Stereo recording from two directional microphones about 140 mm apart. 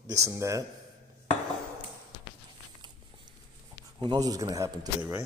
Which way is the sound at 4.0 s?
30° right (ahead or behind).